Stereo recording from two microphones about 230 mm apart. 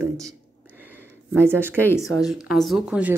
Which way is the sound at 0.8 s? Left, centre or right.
Centre.